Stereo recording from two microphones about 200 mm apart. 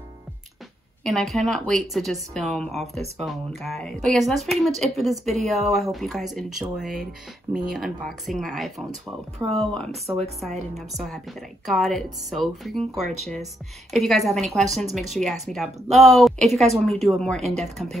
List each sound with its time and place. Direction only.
1.0 s speech: centre (ahead or behind)
10.0 s speech: 30° right (ahead or behind)
10.9 s speech: centre (ahead or behind)